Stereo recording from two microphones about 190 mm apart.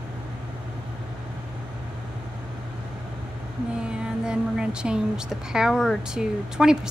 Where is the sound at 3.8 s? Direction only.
5° right (ahead or behind).